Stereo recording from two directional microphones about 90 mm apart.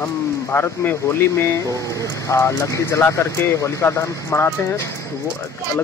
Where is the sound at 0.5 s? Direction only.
25° left (ahead or behind).